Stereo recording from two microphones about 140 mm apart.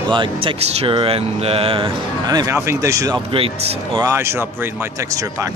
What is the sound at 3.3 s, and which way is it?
Speech, 40° right (ahead or behind).